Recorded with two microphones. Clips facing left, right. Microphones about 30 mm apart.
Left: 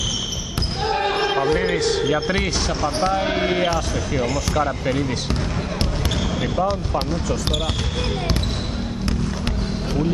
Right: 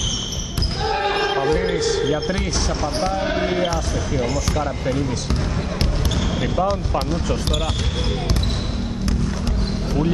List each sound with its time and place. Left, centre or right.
0.8 s basketball bounce: centre
3.1 s speech: left
6.4 s speech: centre